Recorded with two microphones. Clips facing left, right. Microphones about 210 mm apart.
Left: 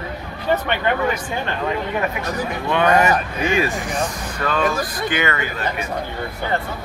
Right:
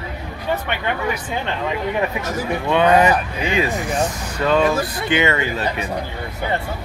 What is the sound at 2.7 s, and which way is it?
Speech, 15° right (ahead or behind).